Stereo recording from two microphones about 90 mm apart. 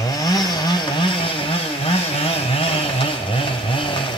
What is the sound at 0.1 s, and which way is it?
Chainsaw, 45° left (ahead or behind).